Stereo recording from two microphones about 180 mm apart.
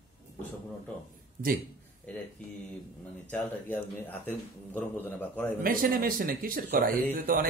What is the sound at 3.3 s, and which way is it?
Speech, 10° left (ahead or behind).